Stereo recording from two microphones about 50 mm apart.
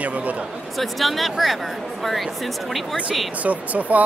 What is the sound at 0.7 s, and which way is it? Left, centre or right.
Speech, centre.